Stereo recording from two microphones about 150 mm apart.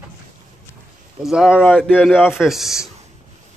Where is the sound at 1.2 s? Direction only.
5° right (ahead or behind).